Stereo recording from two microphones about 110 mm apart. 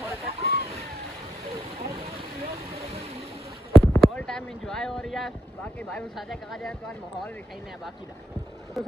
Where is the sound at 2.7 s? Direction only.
70° right (ahead or behind).